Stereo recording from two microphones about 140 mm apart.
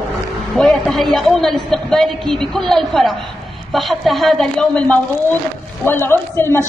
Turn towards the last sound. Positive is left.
turn(degrees=15)  # may be behind; listen again after turning